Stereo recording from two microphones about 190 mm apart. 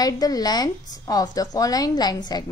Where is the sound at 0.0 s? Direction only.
20° left (ahead or behind).